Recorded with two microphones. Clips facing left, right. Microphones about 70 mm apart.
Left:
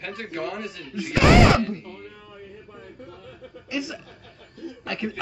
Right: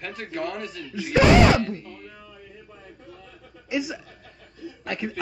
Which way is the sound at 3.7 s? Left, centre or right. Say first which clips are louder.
Right 3 dB; centre.